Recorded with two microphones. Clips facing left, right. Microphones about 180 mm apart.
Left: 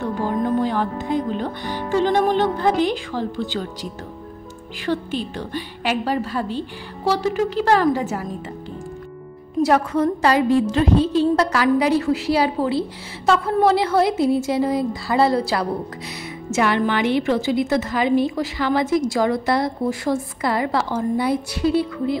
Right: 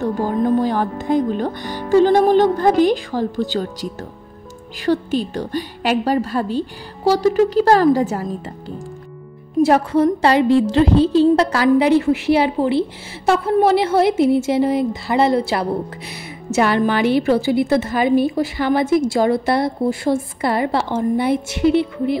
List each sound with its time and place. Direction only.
0.6 s speech: 40° right (ahead or behind)
4.8 s speech: 40° right (ahead or behind)
9.6 s a woman's voice: 30° right (ahead or behind)
16.5 s a woman's voice: 35° right (ahead or behind)